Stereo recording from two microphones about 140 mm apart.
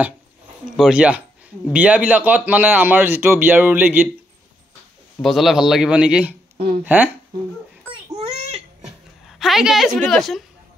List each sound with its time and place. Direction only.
0.7 s a man's voice: 5° right (ahead or behind)
5.2 s a man's voice: centre (ahead or behind)
8.1 s a sound: 50° right (ahead or behind)
9.4 s a woman's voice: centre (ahead or behind)